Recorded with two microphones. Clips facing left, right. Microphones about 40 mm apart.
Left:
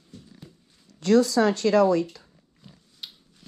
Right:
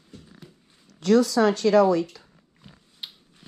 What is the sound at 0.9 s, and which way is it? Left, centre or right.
Speech, right.